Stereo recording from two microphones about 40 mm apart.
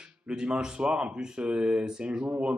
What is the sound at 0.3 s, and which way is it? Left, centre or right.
Speech, centre.